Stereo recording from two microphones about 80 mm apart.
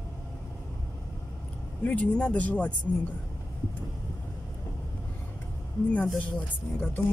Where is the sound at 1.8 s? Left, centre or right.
Centre.